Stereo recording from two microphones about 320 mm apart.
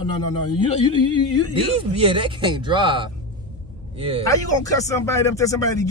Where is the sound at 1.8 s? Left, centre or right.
Centre.